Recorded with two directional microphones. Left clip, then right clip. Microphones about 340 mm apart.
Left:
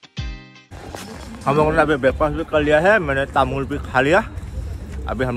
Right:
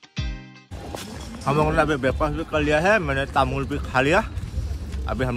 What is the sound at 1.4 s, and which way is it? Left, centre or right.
A man's voice, centre.